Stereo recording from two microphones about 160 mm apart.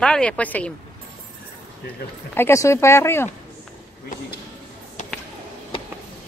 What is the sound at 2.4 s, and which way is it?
Speech, 15° left (ahead or behind).